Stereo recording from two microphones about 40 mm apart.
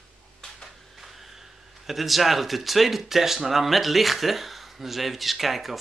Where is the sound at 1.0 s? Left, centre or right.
Centre.